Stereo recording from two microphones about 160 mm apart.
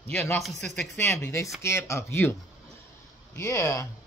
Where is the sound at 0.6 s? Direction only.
5° left (ahead or behind).